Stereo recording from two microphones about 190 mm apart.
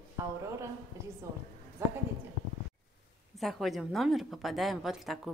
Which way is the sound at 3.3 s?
Centre (ahead or behind).